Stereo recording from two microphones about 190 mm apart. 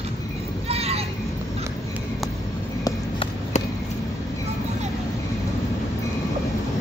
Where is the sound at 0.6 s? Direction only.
30° right (ahead or behind).